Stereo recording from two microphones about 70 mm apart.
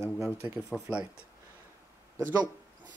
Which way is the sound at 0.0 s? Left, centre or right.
Right.